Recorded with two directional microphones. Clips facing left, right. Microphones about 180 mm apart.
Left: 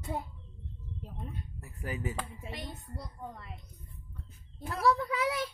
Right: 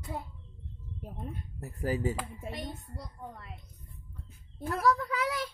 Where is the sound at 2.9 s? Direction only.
Centre (ahead or behind).